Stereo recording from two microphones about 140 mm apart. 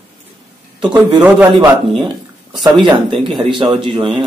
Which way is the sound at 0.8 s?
10° right (ahead or behind).